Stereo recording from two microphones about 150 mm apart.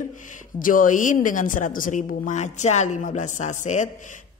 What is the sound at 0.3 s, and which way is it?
A woman's voice, 65° left (ahead or behind).